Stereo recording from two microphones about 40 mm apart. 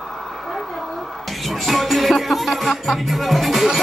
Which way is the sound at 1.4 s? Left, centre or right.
Centre.